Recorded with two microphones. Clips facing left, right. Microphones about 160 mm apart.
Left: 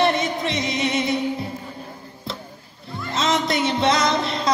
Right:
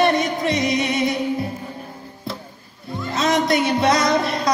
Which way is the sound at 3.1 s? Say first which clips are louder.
Right 3 dB; 25° left (ahead or behind).